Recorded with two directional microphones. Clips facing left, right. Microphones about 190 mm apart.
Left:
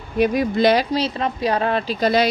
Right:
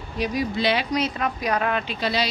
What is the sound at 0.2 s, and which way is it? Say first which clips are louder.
Speech: left 7 dB; 55° left (ahead or behind).